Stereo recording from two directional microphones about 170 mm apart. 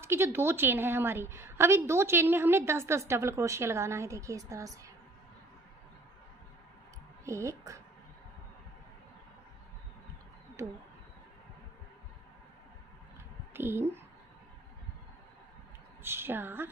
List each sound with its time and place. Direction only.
0.0 s a woman's voice: 15° right (ahead or behind)
7.2 s a woman's voice: 15° right (ahead or behind)
13.5 s speech: 15° right (ahead or behind)
16.0 s a woman's voice: 15° right (ahead or behind)